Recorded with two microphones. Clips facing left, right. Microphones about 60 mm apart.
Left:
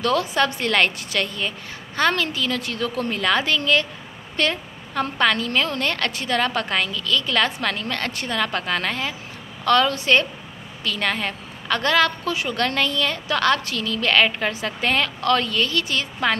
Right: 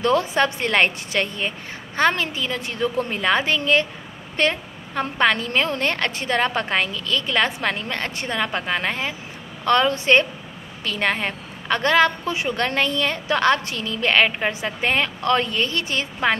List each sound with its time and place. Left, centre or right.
0.0 s a woman's voice: right